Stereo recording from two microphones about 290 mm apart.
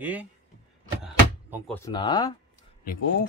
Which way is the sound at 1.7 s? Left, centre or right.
Centre.